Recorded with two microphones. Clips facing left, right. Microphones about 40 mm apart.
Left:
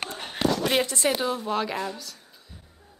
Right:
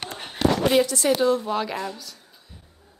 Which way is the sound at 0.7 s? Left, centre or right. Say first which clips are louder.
Right 4 dB; left.